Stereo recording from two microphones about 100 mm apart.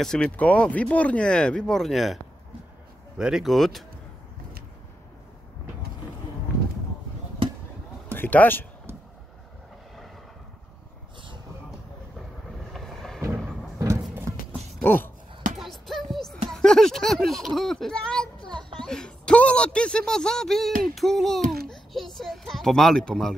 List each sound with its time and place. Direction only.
0.0 s speech: 5° left (ahead or behind)
3.2 s speech: 5° right (ahead or behind)
8.1 s speech: 15° left (ahead or behind)
12.7 s a sound: 5° left (ahead or behind)
13.7 s music: 30° right (ahead or behind)
14.8 s a sound: 20° left (ahead or behind)
15.5 s music: centre (ahead or behind)
16.4 s speech: 5° left (ahead or behind)